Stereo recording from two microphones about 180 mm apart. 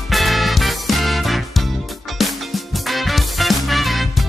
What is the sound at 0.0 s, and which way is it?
Music, centre (ahead or behind).